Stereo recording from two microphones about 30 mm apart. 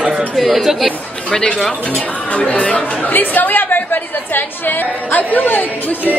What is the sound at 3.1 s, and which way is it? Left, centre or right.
A woman's voice, left.